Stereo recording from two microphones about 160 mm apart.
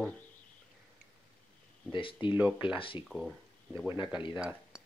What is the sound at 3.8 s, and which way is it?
Speech, 10° right (ahead or behind).